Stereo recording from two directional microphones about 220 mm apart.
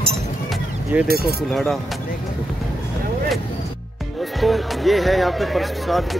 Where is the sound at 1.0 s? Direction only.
45° right (ahead or behind).